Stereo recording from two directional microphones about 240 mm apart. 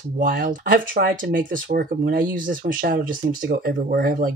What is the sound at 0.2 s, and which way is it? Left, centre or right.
Speech, right.